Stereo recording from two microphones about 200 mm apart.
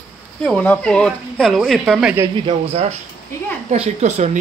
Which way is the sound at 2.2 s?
25° right (ahead or behind).